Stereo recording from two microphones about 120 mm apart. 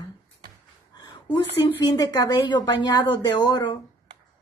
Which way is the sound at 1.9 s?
35° left (ahead or behind).